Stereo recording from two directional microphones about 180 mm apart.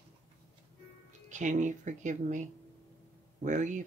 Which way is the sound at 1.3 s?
45° right (ahead or behind).